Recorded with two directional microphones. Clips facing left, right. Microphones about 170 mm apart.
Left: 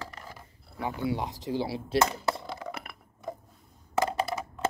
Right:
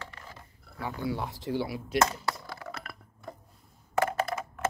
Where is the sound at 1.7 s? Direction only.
30° left (ahead or behind).